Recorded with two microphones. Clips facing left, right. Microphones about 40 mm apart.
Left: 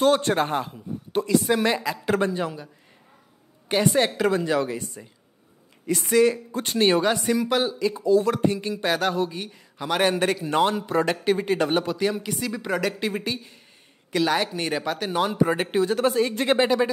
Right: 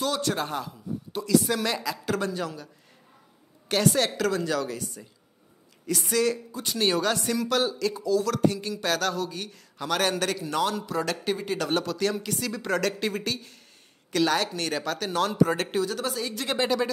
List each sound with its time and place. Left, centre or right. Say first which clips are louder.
0.0 s a man's voice: left 7 dB; left
6.5 s a man's voice: left 5 dB; left
6.8 s speech: left 4 dB; left
8.0 s a man's voice: left 4 dB; left
15.8 s speech: left 8 dB; left